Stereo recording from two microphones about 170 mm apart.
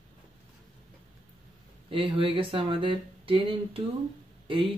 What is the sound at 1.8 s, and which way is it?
Speech, 30° right (ahead or behind).